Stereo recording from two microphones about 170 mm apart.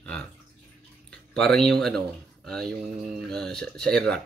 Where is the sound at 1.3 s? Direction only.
5° left (ahead or behind).